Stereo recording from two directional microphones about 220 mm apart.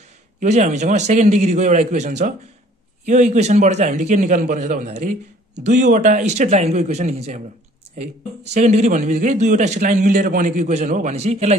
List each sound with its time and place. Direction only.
0.4 s a man's voice: 35° right (ahead or behind)
8.5 s a man's voice: 30° right (ahead or behind)